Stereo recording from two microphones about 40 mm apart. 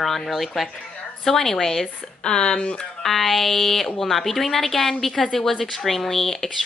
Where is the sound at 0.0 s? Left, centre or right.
Centre.